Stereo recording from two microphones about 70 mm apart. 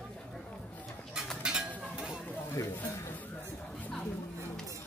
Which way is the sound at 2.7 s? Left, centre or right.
Left.